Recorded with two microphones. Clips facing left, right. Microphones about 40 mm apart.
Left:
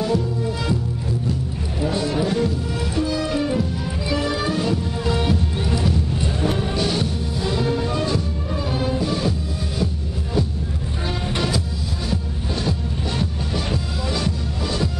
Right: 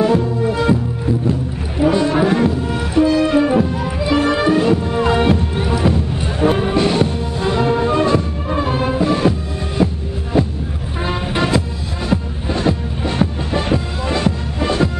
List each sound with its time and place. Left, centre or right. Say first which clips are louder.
0.0 s music: right 7 dB; right